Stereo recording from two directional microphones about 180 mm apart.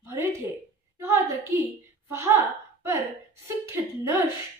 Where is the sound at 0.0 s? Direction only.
15° right (ahead or behind).